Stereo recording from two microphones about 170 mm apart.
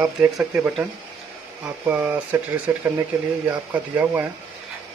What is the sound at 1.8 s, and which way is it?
Speech, 10° right (ahead or behind).